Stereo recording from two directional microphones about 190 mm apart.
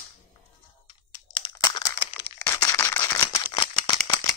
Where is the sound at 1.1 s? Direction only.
25° left (ahead or behind).